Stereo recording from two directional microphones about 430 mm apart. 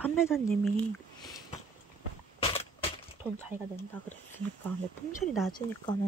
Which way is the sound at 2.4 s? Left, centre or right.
Centre.